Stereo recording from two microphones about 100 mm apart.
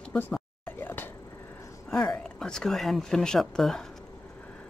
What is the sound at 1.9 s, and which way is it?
Speech, 5° left (ahead or behind).